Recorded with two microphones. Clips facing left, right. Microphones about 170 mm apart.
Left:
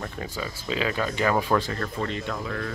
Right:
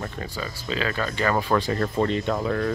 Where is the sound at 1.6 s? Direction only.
30° right (ahead or behind).